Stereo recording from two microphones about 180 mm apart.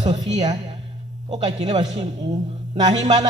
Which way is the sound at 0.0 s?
25° right (ahead or behind).